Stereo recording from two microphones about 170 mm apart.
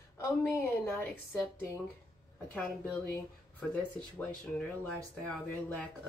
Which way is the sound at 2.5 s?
10° left (ahead or behind).